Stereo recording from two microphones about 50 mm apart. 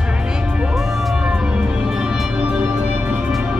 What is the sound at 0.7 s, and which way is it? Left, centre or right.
Music, centre.